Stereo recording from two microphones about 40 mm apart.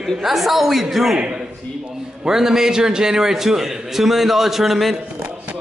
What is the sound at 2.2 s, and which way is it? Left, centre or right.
A man's voice, centre.